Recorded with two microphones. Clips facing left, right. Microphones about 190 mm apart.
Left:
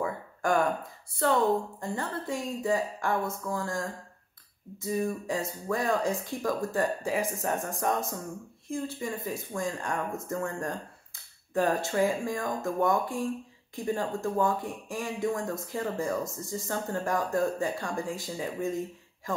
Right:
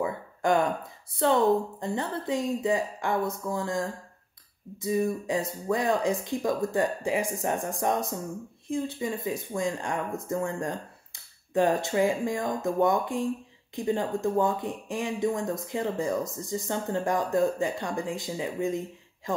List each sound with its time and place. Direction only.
0.0 s a sound: 15° right (ahead or behind)
1.8 s a woman's voice: 20° right (ahead or behind)
4.8 s speech: 15° right (ahead or behind)